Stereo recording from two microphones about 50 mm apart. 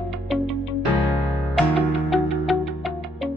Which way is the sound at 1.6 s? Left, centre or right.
Centre.